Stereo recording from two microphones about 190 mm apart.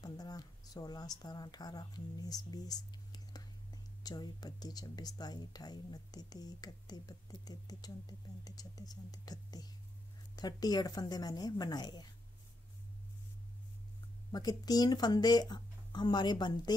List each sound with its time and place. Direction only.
0.0 s speech: 20° left (ahead or behind)
14.3 s speech: 20° left (ahead or behind)